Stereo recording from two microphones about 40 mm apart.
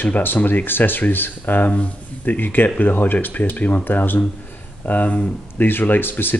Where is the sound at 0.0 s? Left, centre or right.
Left.